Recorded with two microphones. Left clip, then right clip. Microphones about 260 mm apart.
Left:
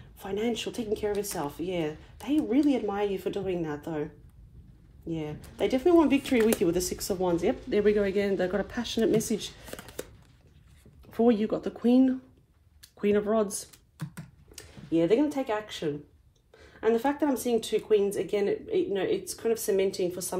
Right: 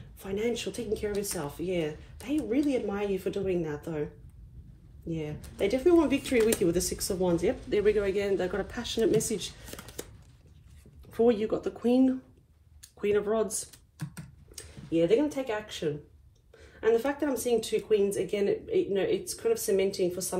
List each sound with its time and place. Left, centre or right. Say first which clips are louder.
0.2 s speech: even; left
5.0 s speech: left 1 dB; left
11.1 s speech: even; left